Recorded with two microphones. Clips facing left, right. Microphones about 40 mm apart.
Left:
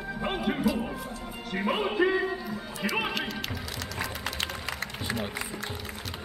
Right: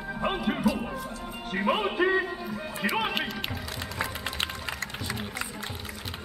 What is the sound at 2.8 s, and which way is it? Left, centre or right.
Speech, centre.